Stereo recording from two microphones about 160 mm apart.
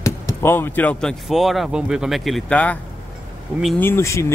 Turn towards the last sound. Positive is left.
turn(degrees=15)  # may be behind; listen again after turning